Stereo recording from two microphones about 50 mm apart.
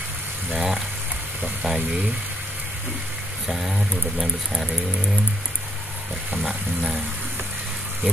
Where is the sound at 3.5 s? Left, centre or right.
Centre.